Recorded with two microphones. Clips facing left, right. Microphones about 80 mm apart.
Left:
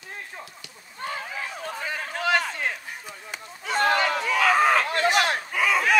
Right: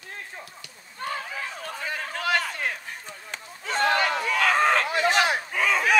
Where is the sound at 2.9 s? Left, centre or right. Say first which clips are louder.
Left 1 dB; centre.